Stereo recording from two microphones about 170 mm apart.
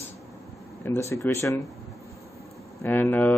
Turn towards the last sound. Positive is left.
turn(degrees=10)  # may be behind; listen again after turning